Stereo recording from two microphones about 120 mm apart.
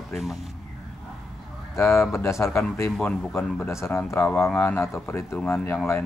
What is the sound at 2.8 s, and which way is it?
Speech, 10° left (ahead or behind).